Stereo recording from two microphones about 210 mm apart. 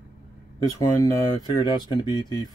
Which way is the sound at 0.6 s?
15° left (ahead or behind).